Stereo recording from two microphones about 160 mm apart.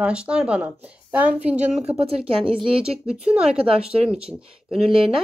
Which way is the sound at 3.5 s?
40° right (ahead or behind).